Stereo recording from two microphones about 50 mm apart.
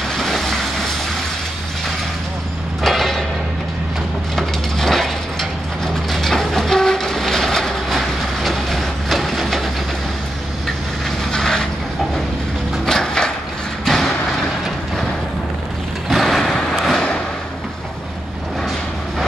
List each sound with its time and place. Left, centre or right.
0.1 s train: centre
2.8 s music: centre
4.4 s mechanisms: centre
6.1 s train: centre
11.3 s vehicle: centre
12.8 s a sound: centre
13.8 s vehicle: centre
16.1 s a sound: centre